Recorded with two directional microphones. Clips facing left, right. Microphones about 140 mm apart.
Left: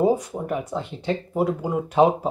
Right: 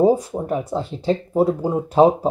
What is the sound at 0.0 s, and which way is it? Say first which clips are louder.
Speech: right 4 dB; 30° right (ahead or behind).